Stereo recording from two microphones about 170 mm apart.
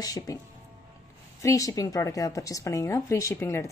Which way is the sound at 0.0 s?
20° left (ahead or behind).